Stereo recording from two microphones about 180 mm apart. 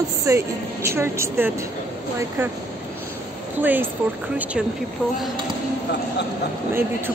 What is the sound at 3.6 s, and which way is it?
Speech, 10° right (ahead or behind).